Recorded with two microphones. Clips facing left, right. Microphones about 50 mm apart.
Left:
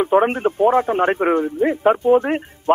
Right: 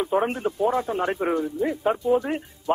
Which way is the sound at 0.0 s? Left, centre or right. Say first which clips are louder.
Left 7 dB; left.